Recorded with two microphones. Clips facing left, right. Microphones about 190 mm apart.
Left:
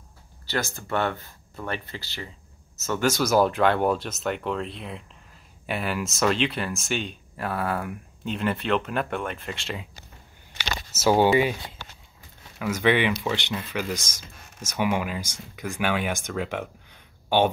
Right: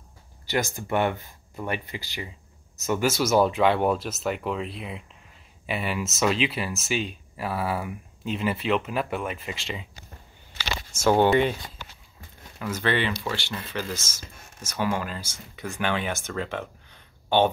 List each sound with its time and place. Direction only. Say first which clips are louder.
0.5 s speech: right 2 dB; 15° right (ahead or behind); by 9.8 s centre (ahead or behind)
10.9 s speech: even; 5° left (ahead or behind)
12.5 s speech: left 4 dB; 10° left (ahead or behind)